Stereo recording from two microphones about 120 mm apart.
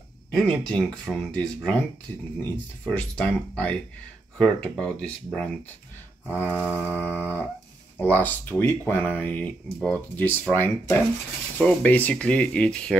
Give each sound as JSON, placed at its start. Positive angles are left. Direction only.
{"t": 0.3, "sound": "speech", "side_deg": 5}